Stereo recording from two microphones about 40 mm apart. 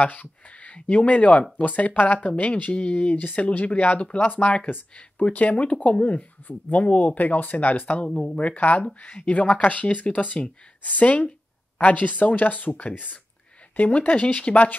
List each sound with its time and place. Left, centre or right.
0.0 s speech: left
5.3 s speech: left
8.1 s speech: left
8.4 s speech: left